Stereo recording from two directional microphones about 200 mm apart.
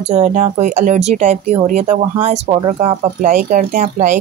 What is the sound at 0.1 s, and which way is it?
Speech, 35° right (ahead or behind).